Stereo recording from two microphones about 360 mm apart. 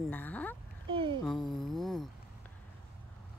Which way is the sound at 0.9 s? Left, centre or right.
Centre.